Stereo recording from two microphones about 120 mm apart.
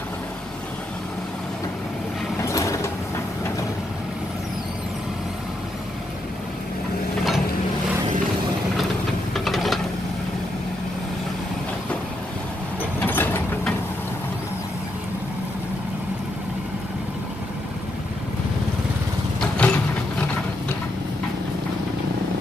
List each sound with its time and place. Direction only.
2.4 s mechanisms: 25° left (ahead or behind)
9.3 s a sound: centre (ahead or behind)
13.0 s mechanisms: 15° left (ahead or behind)
19.4 s vehicle: 5° left (ahead or behind)